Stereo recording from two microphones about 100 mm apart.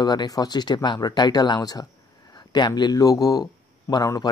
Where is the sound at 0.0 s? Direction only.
45° left (ahead or behind).